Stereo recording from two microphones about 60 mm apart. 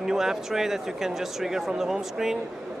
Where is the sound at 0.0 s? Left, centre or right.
Centre.